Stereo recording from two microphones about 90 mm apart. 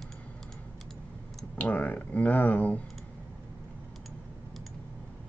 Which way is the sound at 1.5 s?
15° left (ahead or behind).